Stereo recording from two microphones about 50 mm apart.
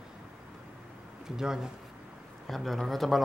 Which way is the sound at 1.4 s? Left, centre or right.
Centre.